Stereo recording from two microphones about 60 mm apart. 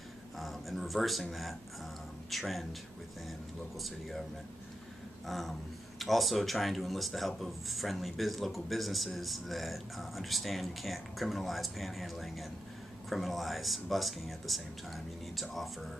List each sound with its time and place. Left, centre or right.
0.4 s a sound: centre
1.3 s speech: centre
5.2 s speech: centre